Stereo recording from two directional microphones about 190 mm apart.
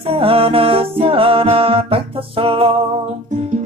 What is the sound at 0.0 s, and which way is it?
Music, 30° right (ahead or behind).